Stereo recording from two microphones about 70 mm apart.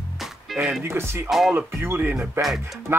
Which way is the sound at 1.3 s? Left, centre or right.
Centre.